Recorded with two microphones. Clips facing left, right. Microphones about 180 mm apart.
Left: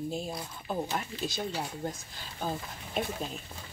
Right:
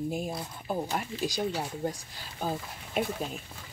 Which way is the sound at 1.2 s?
15° right (ahead or behind).